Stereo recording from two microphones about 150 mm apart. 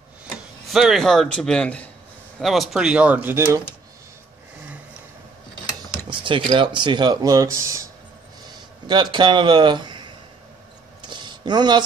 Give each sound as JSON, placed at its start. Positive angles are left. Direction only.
{"t": 0.7, "sound": "a man's voice", "side_deg": 0}
{"t": 6.0, "sound": "speech", "side_deg": -35}
{"t": 8.8, "sound": "a man's voice", "side_deg": -30}
{"t": 11.0, "sound": "a sound", "side_deg": -30}